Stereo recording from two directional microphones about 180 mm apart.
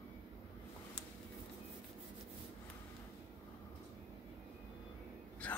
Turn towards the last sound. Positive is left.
turn(degrees=5)  # may be behind; listen again after turning